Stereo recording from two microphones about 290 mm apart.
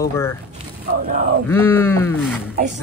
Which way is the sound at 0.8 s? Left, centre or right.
Right.